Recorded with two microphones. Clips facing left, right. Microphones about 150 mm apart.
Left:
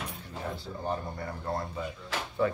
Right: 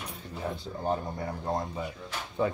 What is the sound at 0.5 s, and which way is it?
Speech, 20° right (ahead or behind).